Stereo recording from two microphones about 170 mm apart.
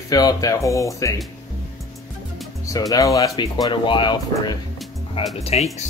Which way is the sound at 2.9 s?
20° left (ahead or behind).